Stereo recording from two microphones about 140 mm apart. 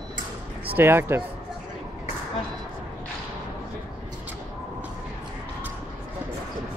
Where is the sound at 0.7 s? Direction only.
15° right (ahead or behind).